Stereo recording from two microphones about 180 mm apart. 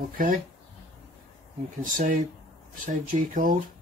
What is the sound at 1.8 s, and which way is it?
Speech, 45° right (ahead or behind).